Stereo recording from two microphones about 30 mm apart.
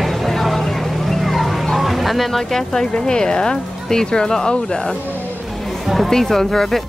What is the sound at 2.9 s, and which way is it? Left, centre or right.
Speech, left.